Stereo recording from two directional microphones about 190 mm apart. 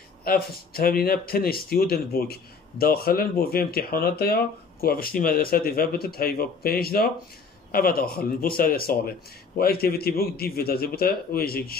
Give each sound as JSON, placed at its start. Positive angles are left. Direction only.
{"t": 0.2, "sound": "speech", "side_deg": 50}